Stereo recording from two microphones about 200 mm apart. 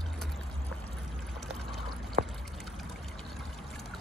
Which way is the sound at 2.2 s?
50° right (ahead or behind).